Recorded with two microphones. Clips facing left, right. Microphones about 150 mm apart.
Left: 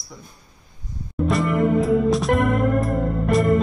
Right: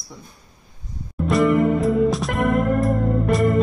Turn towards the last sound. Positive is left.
turn(degrees=0)  # may be behind; listen again after turning